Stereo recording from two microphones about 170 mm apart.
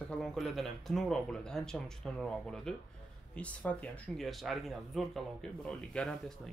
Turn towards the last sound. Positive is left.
turn(degrees=5)  # may be behind; listen again after turning